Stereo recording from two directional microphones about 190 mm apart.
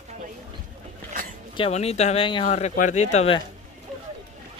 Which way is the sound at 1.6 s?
35° left (ahead or behind).